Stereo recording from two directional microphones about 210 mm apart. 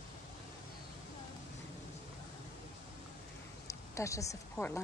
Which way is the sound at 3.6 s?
15° left (ahead or behind).